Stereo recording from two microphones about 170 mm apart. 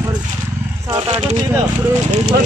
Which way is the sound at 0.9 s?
35° right (ahead or behind).